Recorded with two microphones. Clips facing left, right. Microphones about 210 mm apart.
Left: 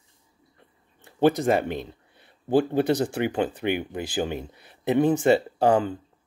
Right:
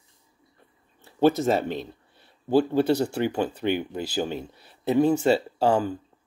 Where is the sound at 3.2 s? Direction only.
55° left (ahead or behind).